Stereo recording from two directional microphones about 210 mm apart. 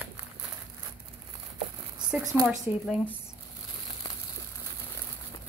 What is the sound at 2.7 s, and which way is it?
Speech, 5° right (ahead or behind).